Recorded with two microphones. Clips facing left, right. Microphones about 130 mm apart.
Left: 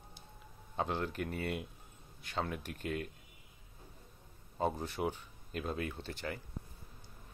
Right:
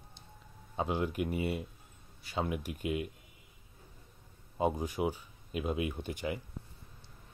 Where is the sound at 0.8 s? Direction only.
10° right (ahead or behind).